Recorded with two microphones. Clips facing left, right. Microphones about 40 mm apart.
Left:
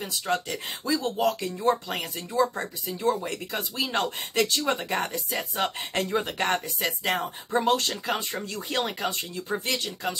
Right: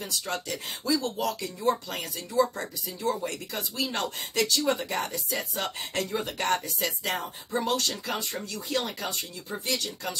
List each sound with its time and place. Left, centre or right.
0.0 s speech: left
1.2 s speech: left